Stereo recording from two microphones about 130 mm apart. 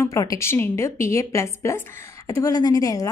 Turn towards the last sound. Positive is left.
turn(degrees=25)  # may be behind; listen again after turning